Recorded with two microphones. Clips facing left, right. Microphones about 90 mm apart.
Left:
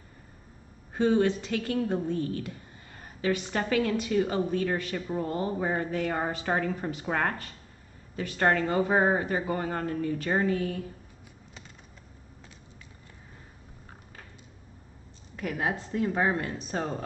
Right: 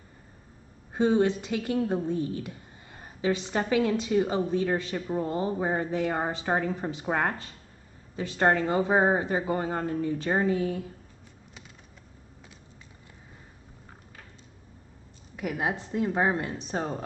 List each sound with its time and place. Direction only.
0.9 s a woman's voice: 20° right (ahead or behind)
15.3 s a woman's voice: 15° right (ahead or behind)